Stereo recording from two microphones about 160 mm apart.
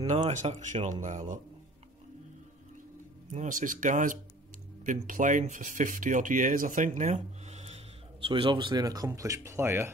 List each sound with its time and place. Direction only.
0.1 s speech: 50° right (ahead or behind)
3.3 s speech: 55° right (ahead or behind)
8.3 s speech: 30° right (ahead or behind)